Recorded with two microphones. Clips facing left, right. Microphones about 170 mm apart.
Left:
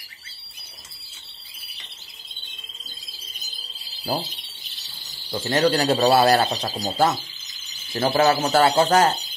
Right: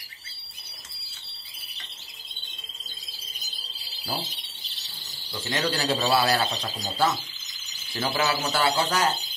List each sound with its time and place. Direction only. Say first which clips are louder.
5.3 s speech: left 8 dB; 45° left (ahead or behind)